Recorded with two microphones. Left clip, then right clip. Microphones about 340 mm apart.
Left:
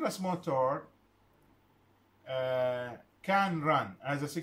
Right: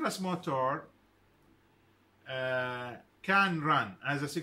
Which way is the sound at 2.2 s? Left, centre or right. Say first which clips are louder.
Left 2 dB; centre.